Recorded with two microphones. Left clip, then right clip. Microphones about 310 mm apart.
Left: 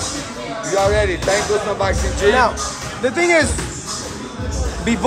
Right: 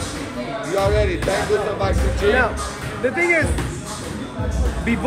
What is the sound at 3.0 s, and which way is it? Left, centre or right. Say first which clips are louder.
Speech: left 3 dB; centre.